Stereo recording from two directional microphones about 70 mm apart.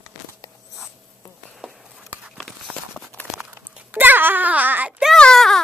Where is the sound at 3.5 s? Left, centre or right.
Right.